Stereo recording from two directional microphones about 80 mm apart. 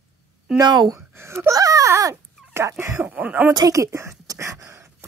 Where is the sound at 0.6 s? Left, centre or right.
Right.